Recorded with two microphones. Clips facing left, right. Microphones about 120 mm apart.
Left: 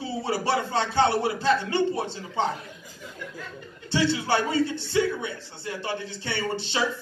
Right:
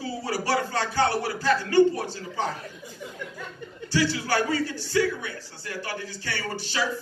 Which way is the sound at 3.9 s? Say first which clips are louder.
Left 1 dB; 25° left (ahead or behind).